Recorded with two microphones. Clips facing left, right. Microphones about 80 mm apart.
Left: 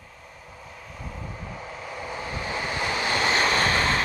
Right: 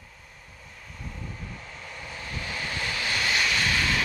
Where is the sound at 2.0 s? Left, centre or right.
Left.